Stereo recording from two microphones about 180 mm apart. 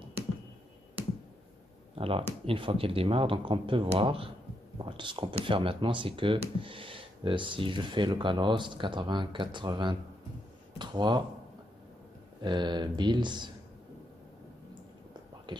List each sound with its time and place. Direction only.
2.0 s speech: 30° right (ahead or behind)
12.4 s speech: 25° right (ahead or behind)